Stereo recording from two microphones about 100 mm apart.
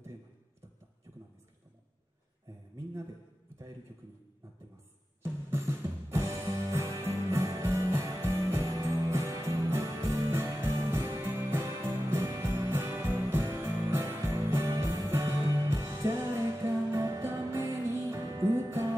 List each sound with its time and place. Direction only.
5.2 s music: 25° right (ahead or behind)